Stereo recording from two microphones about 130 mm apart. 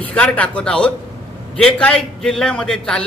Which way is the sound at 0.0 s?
10° left (ahead or behind).